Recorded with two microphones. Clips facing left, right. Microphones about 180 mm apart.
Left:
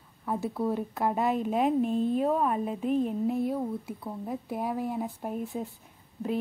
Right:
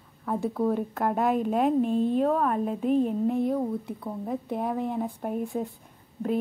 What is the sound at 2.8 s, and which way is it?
Speech, 40° right (ahead or behind).